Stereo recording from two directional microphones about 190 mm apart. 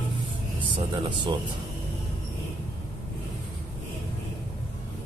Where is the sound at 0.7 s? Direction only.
25° right (ahead or behind).